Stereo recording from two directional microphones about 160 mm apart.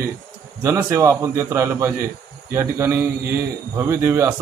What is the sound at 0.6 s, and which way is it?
A man's voice, 20° right (ahead or behind).